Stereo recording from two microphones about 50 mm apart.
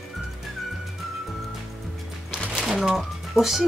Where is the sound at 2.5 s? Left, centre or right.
Centre.